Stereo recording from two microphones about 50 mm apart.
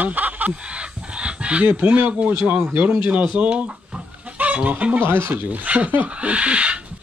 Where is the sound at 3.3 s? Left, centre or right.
Right.